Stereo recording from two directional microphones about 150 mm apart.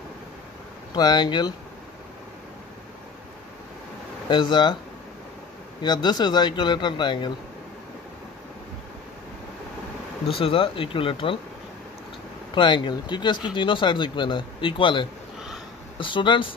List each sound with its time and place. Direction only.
0.9 s speech: 30° left (ahead or behind)
4.3 s speech: 30° left (ahead or behind)
5.8 s speech: 30° left (ahead or behind)
10.3 s speech: 35° left (ahead or behind)
12.5 s speech: 30° left (ahead or behind)